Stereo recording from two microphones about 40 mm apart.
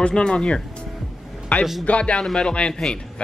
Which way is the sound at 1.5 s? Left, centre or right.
Left.